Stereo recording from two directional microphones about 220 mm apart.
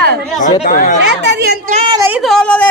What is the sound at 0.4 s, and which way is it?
Speech, 35° left (ahead or behind).